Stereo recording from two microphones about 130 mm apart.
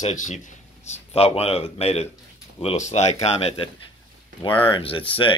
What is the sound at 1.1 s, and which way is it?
Speech, 50° left (ahead or behind).